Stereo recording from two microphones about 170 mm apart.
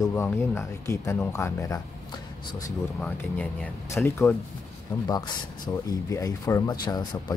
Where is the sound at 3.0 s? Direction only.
5° left (ahead or behind).